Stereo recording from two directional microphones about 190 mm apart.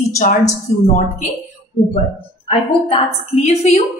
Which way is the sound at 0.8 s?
35° left (ahead or behind).